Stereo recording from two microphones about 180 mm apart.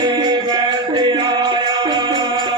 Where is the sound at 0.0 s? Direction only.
25° right (ahead or behind).